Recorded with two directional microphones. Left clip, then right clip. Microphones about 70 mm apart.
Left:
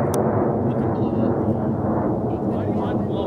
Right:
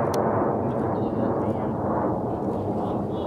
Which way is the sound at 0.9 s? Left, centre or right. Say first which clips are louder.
Left 3 dB; left.